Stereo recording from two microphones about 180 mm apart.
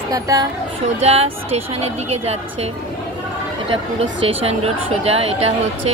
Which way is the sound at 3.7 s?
35° right (ahead or behind).